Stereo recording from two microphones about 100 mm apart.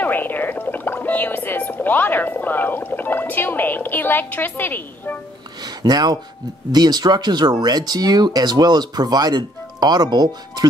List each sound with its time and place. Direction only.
0.0 s speech: 20° left (ahead or behind)
5.6 s speech: 40° right (ahead or behind)